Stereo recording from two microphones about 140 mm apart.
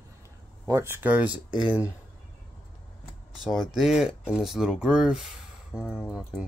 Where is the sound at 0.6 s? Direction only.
20° right (ahead or behind).